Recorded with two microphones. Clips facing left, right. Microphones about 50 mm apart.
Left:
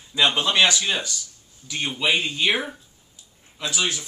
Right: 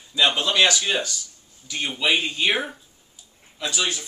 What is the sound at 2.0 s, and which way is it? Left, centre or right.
Speech, centre.